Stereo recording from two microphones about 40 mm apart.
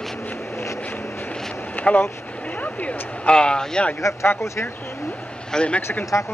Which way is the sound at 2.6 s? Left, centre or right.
Left.